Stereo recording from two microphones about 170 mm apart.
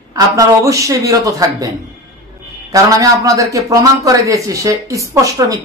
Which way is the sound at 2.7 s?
20° right (ahead or behind).